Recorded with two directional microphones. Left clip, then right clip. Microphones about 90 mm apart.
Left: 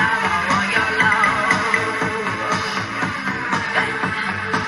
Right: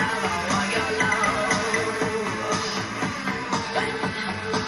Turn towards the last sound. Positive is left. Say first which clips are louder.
# left 6 dB
turn(degrees=5)  # may be behind; listen again after turning